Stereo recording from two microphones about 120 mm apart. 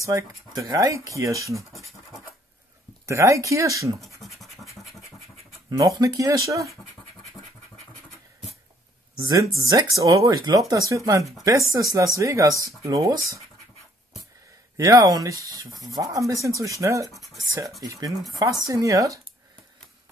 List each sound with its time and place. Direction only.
0.0 s speech: 25° right (ahead or behind)
3.1 s speech: 25° right (ahead or behind)
4.2 s scratch: centre (ahead or behind)
5.7 s speech: 30° right (ahead or behind)
9.6 s speech: 30° right (ahead or behind)
14.8 s speech: 30° right (ahead or behind)